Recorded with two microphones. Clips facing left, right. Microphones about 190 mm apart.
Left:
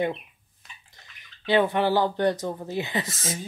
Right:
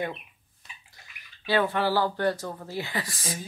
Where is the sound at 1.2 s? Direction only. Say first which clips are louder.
Left 3 dB; 20° left (ahead or behind).